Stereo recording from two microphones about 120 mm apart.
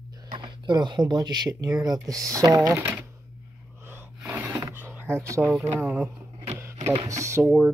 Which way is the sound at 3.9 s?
15° right (ahead or behind).